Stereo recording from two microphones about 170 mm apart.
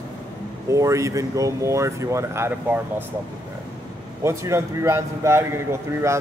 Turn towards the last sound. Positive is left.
turn(degrees=-15)  # may be behind; listen again after turning